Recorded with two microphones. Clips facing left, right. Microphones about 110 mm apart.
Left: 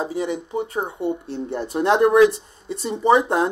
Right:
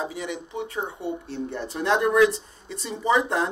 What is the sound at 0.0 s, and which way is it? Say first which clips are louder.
Speech: left 6 dB; 30° left (ahead or behind).